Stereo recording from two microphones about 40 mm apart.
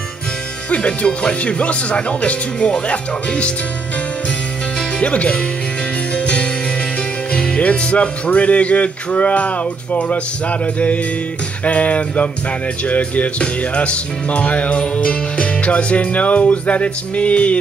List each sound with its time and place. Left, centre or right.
0.7 s speech: left
5.0 s speech: left
6.1 s music: left
11.6 s music: left